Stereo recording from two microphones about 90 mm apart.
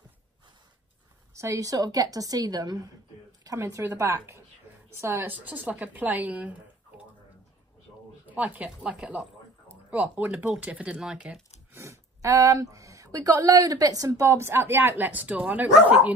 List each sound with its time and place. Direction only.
1.3 s a woman's voice: 35° right (ahead or behind)
3.5 s a woman's voice: 30° right (ahead or behind)
8.3 s speech: 20° right (ahead or behind)
11.7 s speech: 35° right (ahead or behind)
14.3 s a woman's voice: 25° right (ahead or behind)